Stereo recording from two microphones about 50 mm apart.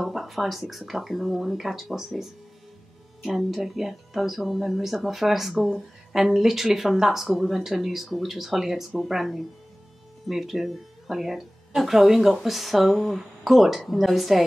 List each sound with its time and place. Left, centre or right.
0.0 s speech: centre
3.3 s speech: centre